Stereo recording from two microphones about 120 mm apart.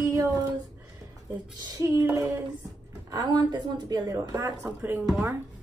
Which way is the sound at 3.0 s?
35° right (ahead or behind).